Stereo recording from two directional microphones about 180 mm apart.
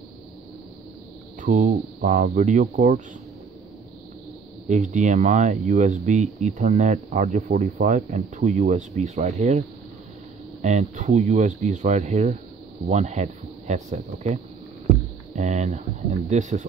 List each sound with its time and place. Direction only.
1.4 s speech: 45° right (ahead or behind)
4.6 s speech: 45° right (ahead or behind)
10.6 s speech: 40° right (ahead or behind)